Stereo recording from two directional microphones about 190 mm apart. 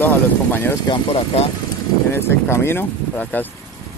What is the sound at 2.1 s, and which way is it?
Speech, 15° left (ahead or behind).